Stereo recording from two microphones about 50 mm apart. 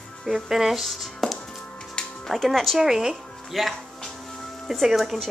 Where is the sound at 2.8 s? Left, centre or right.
Centre.